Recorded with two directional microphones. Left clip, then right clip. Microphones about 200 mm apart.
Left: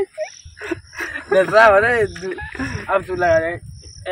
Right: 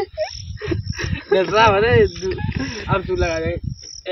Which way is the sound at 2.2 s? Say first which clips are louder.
Right 1 dB; 10° right (ahead or behind).